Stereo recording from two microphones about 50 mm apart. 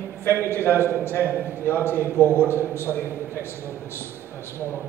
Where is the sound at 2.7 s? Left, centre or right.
Left.